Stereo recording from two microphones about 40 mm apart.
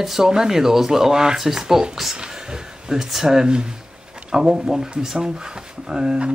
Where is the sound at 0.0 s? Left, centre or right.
Centre.